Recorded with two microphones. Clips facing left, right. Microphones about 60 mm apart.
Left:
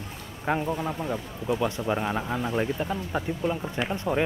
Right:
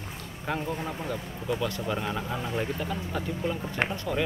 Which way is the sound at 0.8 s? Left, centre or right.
Centre.